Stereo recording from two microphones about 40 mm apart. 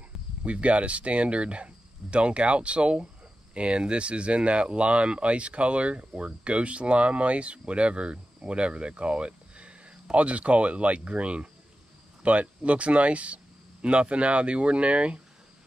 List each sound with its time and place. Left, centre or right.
0.4 s speech: right